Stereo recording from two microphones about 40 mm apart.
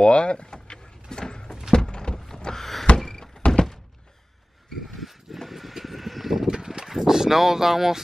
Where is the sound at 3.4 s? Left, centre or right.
Left.